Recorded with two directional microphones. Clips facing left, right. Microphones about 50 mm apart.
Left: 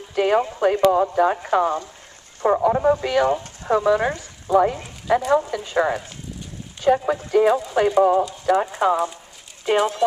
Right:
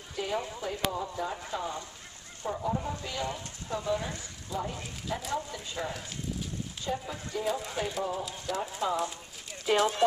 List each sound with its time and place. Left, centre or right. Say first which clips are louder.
0.1 s clip-clop: left 14 dB; left
0.6 s speech: left 16 dB; left
2.4 s speech: left 15 dB; left
6.8 s speech: left 17 dB; left
8.8 s speech: left 10 dB; left
9.7 s speech: left 7 dB; centre